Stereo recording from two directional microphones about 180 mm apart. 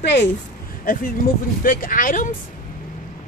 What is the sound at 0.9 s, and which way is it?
Speech, 50° left (ahead or behind).